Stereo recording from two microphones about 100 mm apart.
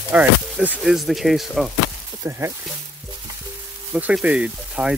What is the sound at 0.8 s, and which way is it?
Speech, centre (ahead or behind).